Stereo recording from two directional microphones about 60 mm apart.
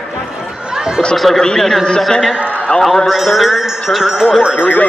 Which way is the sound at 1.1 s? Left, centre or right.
Centre.